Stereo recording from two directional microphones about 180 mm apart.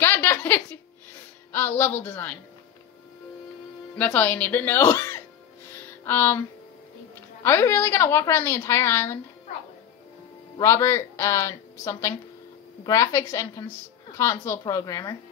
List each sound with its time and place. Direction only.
0.0 s a sound: 10° left (ahead or behind)
1.5 s a woman's voice: 10° left (ahead or behind)
4.0 s a woman's voice: 10° left (ahead or behind)
5.8 s music: 10° left (ahead or behind)
7.4 s a woman's voice: 15° left (ahead or behind)
10.6 s a woman's voice: 15° left (ahead or behind)